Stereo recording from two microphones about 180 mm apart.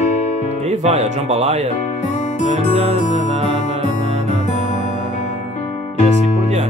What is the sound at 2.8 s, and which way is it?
Speech, 35° right (ahead or behind).